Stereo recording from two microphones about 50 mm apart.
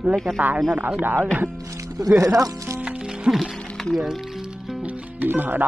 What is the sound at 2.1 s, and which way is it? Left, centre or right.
Speech, right.